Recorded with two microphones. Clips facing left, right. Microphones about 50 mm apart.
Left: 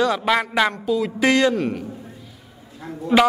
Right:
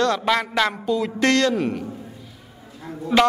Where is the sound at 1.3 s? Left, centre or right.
Centre.